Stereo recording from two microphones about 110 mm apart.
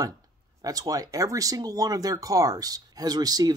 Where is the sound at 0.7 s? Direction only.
35° right (ahead or behind).